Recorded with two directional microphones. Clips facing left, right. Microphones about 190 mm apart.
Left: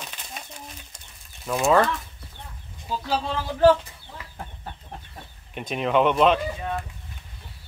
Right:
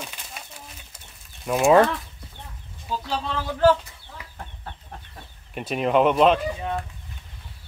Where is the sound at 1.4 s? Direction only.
15° right (ahead or behind).